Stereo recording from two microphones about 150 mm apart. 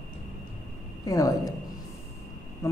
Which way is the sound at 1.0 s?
25° left (ahead or behind).